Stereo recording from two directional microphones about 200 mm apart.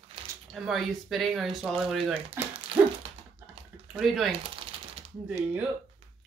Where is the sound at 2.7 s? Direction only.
25° right (ahead or behind).